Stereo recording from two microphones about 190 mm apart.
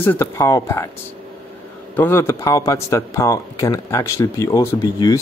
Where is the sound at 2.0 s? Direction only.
15° left (ahead or behind).